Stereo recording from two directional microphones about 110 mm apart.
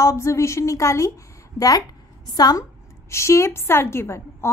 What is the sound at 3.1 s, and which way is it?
A woman's voice, 25° left (ahead or behind).